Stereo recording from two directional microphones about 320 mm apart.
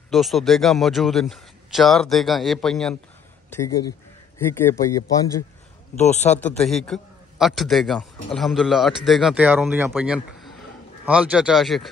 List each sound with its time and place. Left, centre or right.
0.1 s a man's voice: centre
5.9 s speech: left
6.4 s a man's voice: centre